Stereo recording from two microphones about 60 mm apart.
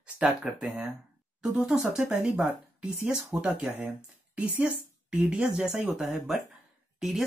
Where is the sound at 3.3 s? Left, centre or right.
Centre.